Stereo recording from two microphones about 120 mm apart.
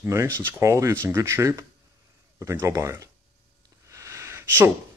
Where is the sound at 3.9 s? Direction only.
25° right (ahead or behind).